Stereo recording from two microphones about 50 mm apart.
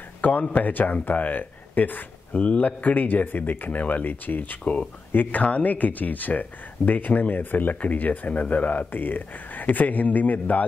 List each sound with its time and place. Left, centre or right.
0.2 s speech: left
2.3 s speech: left